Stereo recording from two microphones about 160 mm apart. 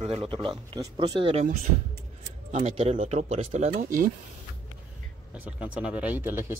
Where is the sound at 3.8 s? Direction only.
60° right (ahead or behind).